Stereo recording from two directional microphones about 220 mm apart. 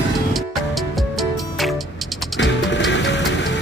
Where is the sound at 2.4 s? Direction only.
55° left (ahead or behind).